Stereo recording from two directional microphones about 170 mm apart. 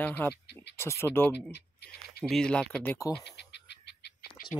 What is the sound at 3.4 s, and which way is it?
Bird, 80° left.